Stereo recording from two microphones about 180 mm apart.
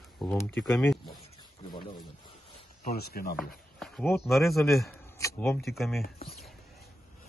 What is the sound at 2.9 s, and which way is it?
Speech, 60° left (ahead or behind).